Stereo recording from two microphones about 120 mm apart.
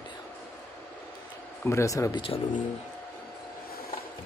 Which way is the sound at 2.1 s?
50° left (ahead or behind).